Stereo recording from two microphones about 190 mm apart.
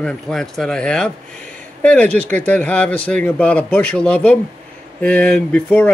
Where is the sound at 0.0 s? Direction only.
Centre (ahead or behind).